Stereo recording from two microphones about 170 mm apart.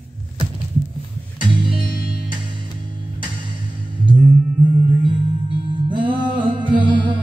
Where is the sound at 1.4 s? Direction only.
30° right (ahead or behind).